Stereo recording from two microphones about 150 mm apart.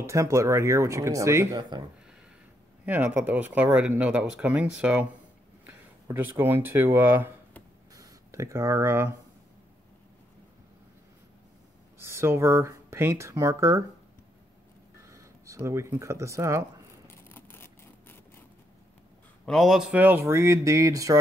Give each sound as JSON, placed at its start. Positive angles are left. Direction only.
{"t": 0.0, "sound": "speech", "side_deg": -20}
{"t": 2.8, "sound": "speech", "side_deg": -10}
{"t": 5.7, "sound": "speech", "side_deg": -15}
{"t": 7.9, "sound": "a sound", "side_deg": -25}
{"t": 12.0, "sound": "speech", "side_deg": -15}
{"t": 15.0, "sound": "speech", "side_deg": -20}
{"t": 17.3, "sound": "a sound", "side_deg": 15}
{"t": 19.4, "sound": "speech", "side_deg": 0}